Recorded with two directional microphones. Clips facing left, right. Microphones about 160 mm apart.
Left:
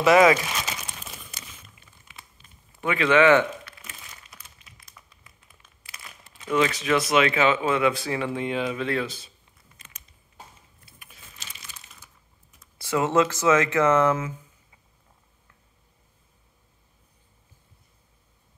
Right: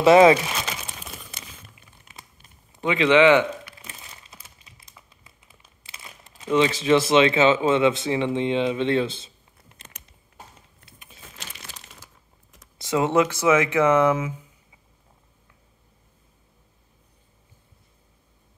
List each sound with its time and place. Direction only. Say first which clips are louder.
0.0 s speech: right 4 dB; 30° right (ahead or behind)
2.0 s crumpling: right 2 dB; 40° right (ahead or behind)
2.7 s speech: right 3 dB; 20° right (ahead or behind)
3.8 s crumpling: right 2 dB; 30° right (ahead or behind)
6.3 s speech: right 3 dB; 25° right (ahead or behind)
11.5 s crumpling: right 4 dB; 75° right (ahead or behind)
12.7 s speech: right 1 dB; 20° right (ahead or behind)